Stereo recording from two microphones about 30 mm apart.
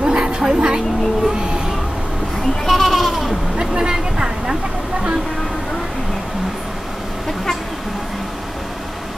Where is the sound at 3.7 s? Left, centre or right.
Right.